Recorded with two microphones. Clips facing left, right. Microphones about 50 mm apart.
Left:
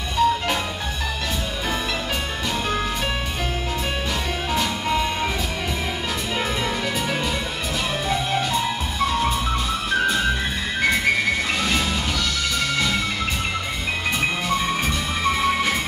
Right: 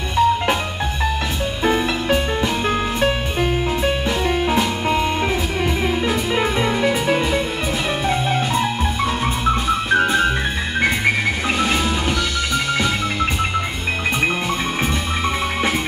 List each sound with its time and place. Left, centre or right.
0.2 s music: centre
1.6 s music: right
4.5 s music: right
6.3 s music: right